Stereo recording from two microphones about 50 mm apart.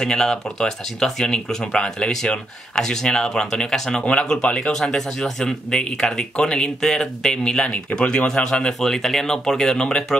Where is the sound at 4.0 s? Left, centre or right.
Left.